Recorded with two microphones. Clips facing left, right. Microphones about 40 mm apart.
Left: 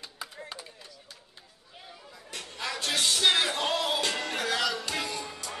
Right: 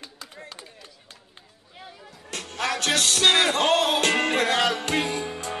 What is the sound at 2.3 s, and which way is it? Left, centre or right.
Music, right.